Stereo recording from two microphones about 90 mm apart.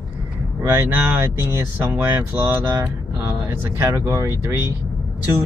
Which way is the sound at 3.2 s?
35° right (ahead or behind).